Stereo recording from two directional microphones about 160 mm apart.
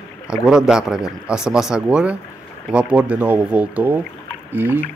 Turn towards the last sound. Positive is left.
turn(degrees=-10)  # may be behind; listen again after turning